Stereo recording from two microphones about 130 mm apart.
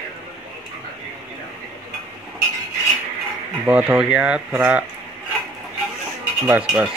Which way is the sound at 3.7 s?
10° right (ahead or behind).